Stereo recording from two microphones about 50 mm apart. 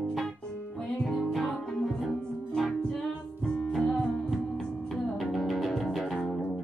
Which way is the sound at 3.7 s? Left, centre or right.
Centre.